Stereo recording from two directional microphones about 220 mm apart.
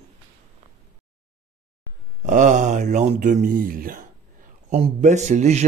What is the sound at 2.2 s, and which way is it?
A man's voice, 35° right (ahead or behind).